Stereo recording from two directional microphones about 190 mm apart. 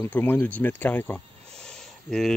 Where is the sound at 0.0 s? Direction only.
10° left (ahead or behind).